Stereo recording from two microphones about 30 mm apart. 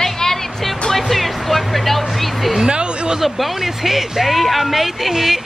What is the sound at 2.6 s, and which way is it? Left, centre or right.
Speech, right.